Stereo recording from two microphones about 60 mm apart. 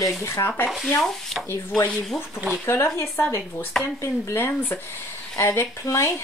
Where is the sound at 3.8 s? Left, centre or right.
Centre.